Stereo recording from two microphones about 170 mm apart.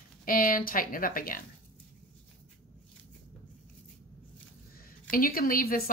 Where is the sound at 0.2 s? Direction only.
55° left (ahead or behind).